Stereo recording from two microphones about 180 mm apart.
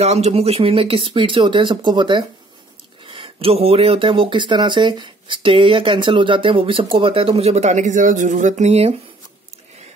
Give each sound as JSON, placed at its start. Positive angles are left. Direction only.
{"t": 0.0, "sound": "speech", "side_deg": -35}